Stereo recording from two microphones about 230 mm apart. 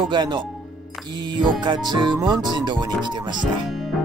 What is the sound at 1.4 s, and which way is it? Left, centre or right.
Speech, centre.